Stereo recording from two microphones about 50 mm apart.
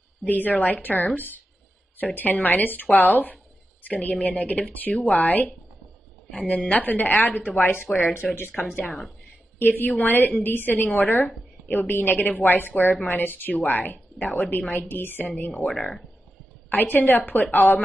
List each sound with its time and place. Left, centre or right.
0.2 s speech: left
16.6 s a woman's voice: left